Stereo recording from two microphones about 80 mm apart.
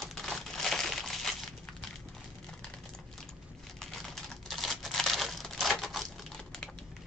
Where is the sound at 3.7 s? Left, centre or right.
Centre.